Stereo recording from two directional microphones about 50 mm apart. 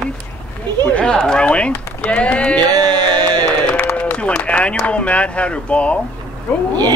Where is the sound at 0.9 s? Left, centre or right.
Centre.